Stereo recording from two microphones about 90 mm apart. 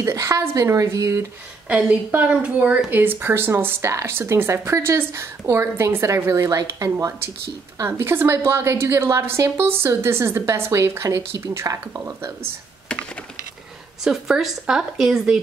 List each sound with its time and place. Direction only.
0.0 s a woman's voice: 35° right (ahead or behind)
1.7 s a woman's voice: 15° right (ahead or behind); by 12.0 s 35° right (ahead or behind)
12.8 s computer keyboard: 10° left (ahead or behind)
14.0 s a woman's voice: 5° right (ahead or behind)